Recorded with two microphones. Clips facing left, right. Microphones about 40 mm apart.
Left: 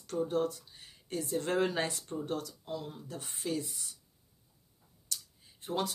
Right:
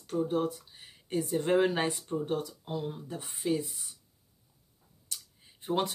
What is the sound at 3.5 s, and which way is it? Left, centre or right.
Speech, centre.